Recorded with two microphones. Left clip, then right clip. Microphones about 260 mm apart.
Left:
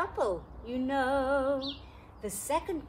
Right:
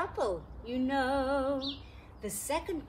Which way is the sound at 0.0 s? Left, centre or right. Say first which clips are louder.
Left 2 dB; centre.